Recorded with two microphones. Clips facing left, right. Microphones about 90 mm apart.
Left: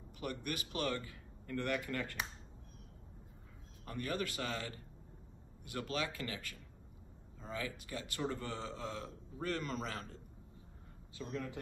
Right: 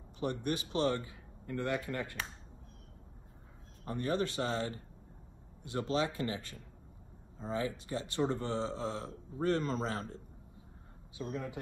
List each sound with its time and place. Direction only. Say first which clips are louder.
0.2 s a man's voice: right 6 dB; 30° right (ahead or behind)
3.8 s a man's voice: right 6 dB; 30° right (ahead or behind)
11.1 s speech: right 3 dB; 10° right (ahead or behind)